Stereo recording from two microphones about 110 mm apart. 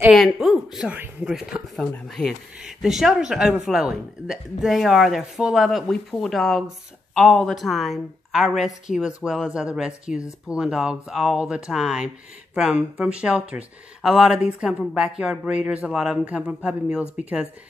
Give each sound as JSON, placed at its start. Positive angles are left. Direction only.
{"t": 0.1, "sound": "speech", "side_deg": 0}
{"t": 0.9, "sound": "speech", "side_deg": -15}
{"t": 1.3, "sound": "speech", "side_deg": -5}